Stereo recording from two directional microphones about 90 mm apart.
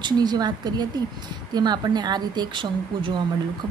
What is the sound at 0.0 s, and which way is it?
A woman's voice, 50° right (ahead or behind).